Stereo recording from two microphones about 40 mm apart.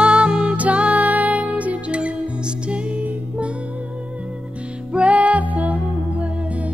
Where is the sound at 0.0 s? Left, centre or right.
Right.